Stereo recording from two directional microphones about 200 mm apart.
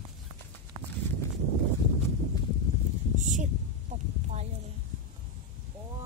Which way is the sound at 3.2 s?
40° right (ahead or behind).